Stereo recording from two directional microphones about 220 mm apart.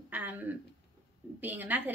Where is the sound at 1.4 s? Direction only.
10° right (ahead or behind).